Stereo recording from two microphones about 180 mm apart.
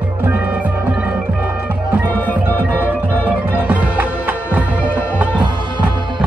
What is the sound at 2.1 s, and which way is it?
Music, 10° left (ahead or behind).